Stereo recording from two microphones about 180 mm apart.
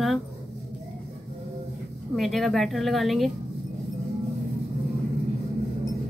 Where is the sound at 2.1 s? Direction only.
Centre (ahead or behind).